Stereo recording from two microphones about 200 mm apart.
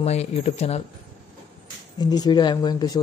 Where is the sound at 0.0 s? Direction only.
30° left (ahead or behind).